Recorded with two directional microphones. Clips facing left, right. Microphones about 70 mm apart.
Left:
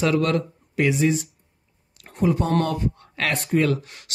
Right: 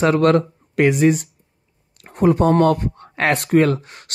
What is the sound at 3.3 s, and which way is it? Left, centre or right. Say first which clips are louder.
Speech: right 7 dB; right.